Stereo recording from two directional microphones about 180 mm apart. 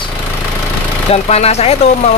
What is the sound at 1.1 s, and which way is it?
Speech, 35° left (ahead or behind).